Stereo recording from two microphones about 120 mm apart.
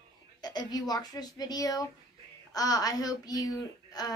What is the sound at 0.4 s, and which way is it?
Speech, 35° left (ahead or behind).